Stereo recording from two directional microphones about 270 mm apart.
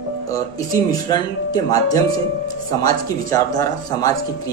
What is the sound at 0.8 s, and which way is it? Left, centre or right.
Speech, centre.